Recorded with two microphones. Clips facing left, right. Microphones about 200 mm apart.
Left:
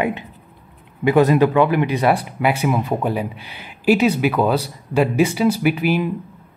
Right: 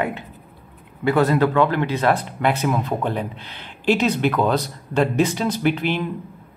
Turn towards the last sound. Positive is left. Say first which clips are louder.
# left 3 dB
turn(degrees=10)  # may be behind; listen again after turning